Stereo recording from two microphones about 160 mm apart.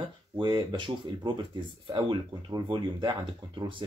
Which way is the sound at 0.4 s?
30° right (ahead or behind).